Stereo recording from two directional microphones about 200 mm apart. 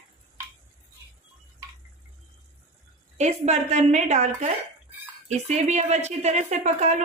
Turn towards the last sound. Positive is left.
turn(degrees=-35)  # may be behind; listen again after turning